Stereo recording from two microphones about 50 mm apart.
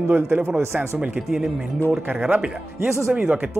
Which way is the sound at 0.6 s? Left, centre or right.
Right.